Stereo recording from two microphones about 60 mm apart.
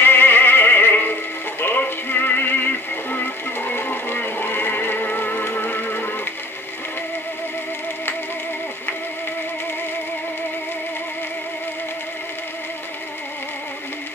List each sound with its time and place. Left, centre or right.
0.0 s music: left
1.6 s synthetic singing: left